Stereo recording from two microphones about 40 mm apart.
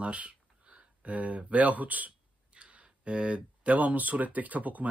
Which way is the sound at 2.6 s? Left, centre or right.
Right.